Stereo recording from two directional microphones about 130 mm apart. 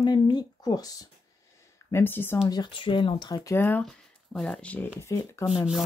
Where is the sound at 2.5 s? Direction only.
35° left (ahead or behind).